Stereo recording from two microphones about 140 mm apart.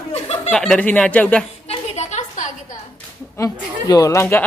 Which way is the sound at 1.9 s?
55° left (ahead or behind).